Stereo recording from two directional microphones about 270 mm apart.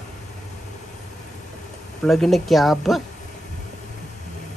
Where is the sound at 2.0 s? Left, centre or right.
Centre.